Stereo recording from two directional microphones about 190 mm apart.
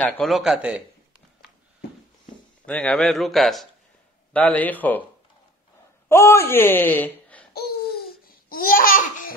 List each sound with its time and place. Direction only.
0.0 s a man's voice: centre (ahead or behind)
2.6 s a man's voice: 5° left (ahead or behind)
6.0 s speech: 15° left (ahead or behind)
7.5 s babbling: 55° left (ahead or behind)